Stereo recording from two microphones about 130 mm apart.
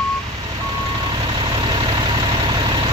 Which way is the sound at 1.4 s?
40° right (ahead or behind).